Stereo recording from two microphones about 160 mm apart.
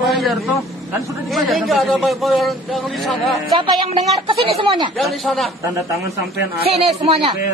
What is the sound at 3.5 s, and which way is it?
Music, 30° right (ahead or behind).